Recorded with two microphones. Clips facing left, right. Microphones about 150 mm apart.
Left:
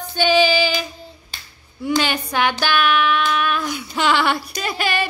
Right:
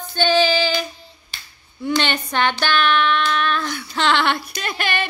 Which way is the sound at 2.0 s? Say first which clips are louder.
Left 1 dB; 5° left (ahead or behind).